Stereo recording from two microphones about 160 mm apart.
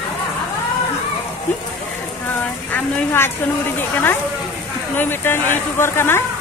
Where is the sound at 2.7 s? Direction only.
15° left (ahead or behind).